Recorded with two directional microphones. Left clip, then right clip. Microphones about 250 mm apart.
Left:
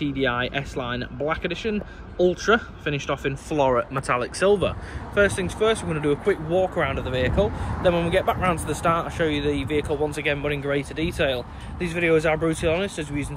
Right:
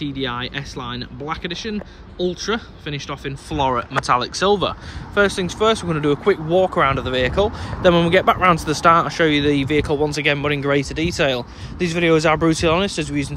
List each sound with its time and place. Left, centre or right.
0.0 s speech: centre; by 13.3 s right